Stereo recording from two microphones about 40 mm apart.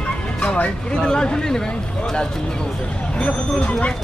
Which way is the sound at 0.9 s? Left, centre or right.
Centre.